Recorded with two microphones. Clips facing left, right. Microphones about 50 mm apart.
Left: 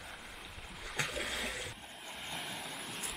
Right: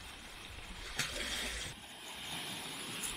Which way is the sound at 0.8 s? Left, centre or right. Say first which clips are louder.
Left 3 dB; centre.